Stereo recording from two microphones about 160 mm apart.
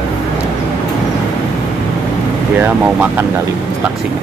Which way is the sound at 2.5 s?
10° right (ahead or behind).